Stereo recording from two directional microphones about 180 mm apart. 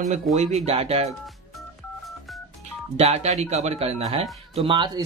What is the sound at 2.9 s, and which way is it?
Speech, 35° right (ahead or behind).